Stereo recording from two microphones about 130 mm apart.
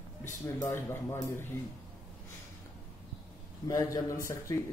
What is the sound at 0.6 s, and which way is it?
Speech, 20° left (ahead or behind).